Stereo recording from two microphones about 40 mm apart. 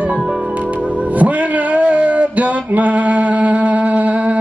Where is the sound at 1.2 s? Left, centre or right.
Right.